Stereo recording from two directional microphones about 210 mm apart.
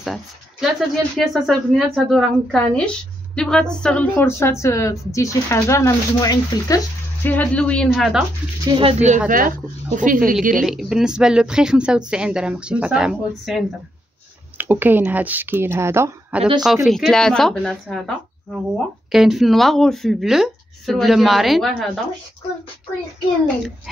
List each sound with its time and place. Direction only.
0.0 s a woman's voice: centre (ahead or behind)
8.6 s speech: 25° right (ahead or behind)
9.3 s speech: 40° right (ahead or behind)
10.5 s a woman's voice: centre (ahead or behind)
19.1 s speech: centre (ahead or behind)